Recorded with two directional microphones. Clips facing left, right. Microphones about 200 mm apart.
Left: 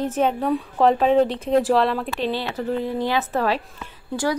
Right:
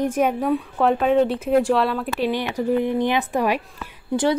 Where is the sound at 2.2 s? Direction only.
15° right (ahead or behind).